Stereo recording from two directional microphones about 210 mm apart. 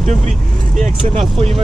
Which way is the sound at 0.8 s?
30° right (ahead or behind).